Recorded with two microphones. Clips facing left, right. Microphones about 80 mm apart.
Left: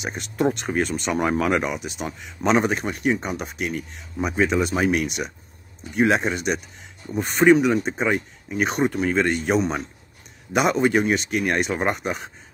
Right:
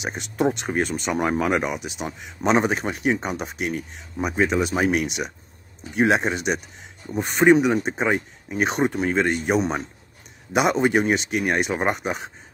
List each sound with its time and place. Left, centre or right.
0.1 s speech: centre
0.9 s speech: centre; by 3.7 s right
4.2 s speech: centre
5.0 s speech: centre
9.2 s speech: centre
9.6 s speech: right
11.4 s speech: centre